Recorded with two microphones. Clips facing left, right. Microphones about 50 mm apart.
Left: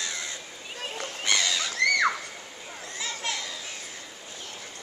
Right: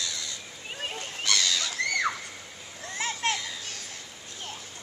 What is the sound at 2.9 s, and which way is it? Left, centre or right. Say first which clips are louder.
Children playing: right 4 dB; right.